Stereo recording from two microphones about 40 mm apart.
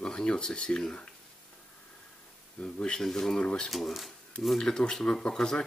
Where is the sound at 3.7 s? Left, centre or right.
Centre.